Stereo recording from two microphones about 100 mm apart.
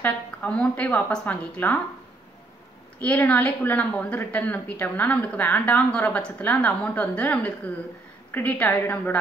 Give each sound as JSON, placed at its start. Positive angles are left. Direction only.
{"t": 0.0, "sound": "a woman's voice", "side_deg": 15}
{"t": 3.0, "sound": "a woman's voice", "side_deg": 15}